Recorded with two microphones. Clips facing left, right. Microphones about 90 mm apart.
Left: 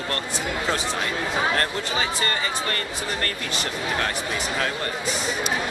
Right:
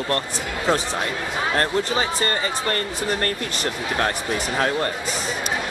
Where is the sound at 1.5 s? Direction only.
35° right (ahead or behind).